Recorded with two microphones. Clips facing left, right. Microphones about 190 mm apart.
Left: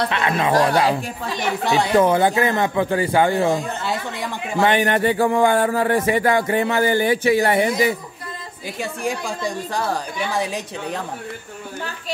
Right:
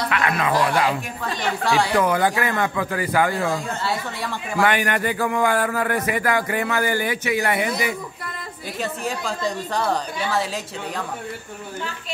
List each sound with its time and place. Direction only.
0.1 s a man's voice: 25° left (ahead or behind)
1.6 s a man's voice: 20° left (ahead or behind)
8.8 s speech: 10° left (ahead or behind)